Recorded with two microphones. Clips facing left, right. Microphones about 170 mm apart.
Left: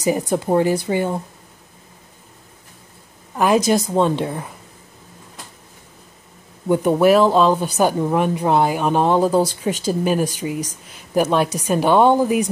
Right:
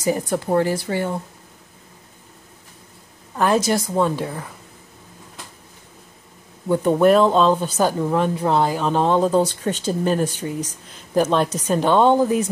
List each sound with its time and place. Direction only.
0.0 s speech: 15° left (ahead or behind)
3.3 s a woman's voice: 15° left (ahead or behind)
6.7 s speech: 10° left (ahead or behind)